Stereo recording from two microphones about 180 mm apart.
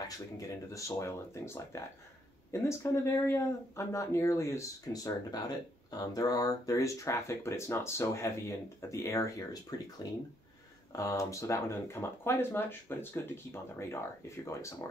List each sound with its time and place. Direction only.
0.4 s speech: 15° left (ahead or behind)